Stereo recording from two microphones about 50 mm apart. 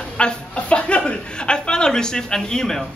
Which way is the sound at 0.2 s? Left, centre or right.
Left.